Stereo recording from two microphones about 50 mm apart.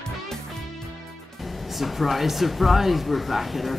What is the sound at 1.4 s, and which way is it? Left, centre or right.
Speech, centre.